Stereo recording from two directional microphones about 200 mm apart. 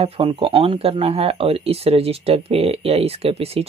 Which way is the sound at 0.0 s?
30° right (ahead or behind).